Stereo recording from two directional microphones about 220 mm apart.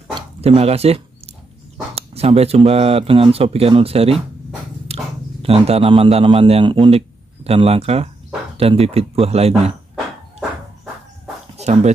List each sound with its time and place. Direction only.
0.1 s dog: 25° right (ahead or behind)
2.0 s a man's voice: 30° right (ahead or behind)
11.5 s a sound: 30° right (ahead or behind)